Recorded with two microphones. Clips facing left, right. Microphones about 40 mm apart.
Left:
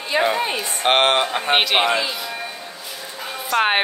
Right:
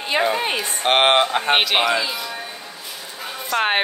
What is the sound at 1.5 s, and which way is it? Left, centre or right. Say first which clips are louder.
Speech: left 2 dB; centre.